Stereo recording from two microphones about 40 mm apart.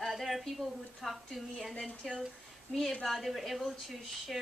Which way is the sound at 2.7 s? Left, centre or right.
Left.